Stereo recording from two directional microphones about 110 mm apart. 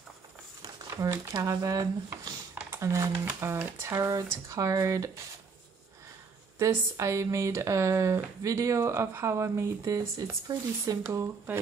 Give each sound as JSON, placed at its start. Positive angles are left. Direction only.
{"t": 0.6, "sound": "crumpling", "side_deg": -35}
{"t": 1.4, "sound": "speech", "side_deg": -30}
{"t": 2.5, "sound": "a sound", "side_deg": -25}
{"t": 3.3, "sound": "speech", "side_deg": -25}
{"t": 6.6, "sound": "speech", "side_deg": -30}
{"t": 11.1, "sound": "speech", "side_deg": -20}